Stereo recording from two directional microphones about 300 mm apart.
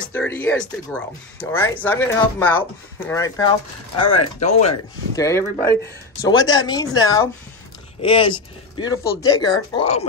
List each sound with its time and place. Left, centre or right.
0.0 s speech: centre
4.2 s speech: left
5.1 s speech: centre